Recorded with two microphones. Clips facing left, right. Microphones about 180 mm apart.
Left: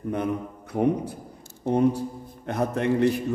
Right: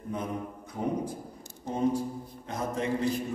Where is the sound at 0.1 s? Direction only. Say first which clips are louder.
Left 6 dB; 70° left (ahead or behind).